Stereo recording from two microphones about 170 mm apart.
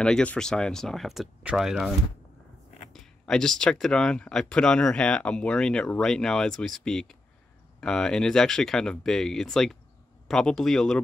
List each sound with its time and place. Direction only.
0.0 s speech: 5° left (ahead or behind)